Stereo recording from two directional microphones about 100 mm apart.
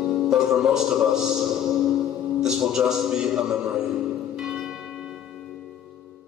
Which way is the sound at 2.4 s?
5° right (ahead or behind).